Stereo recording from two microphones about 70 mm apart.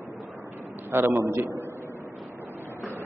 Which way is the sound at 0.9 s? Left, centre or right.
Right.